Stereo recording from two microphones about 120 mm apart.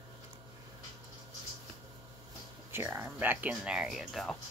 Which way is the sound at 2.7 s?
20° right (ahead or behind).